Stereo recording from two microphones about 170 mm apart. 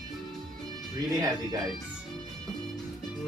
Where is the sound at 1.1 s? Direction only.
20° right (ahead or behind).